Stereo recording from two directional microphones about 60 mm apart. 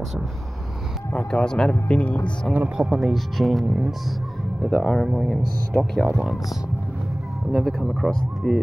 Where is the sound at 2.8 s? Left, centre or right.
Centre.